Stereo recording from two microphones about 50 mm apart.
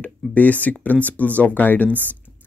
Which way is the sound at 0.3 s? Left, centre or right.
Left.